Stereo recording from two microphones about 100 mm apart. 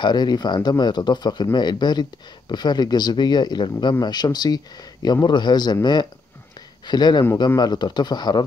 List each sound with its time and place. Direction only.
0.0 s speech: 45° left (ahead or behind)